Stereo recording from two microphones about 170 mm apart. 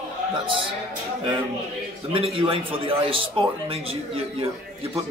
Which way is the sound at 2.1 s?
30° right (ahead or behind).